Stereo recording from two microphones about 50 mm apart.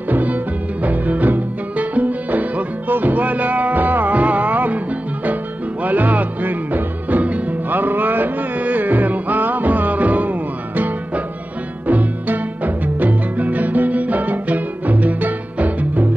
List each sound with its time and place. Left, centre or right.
0.1 s music: right
5.9 s music: right
11.9 s music: right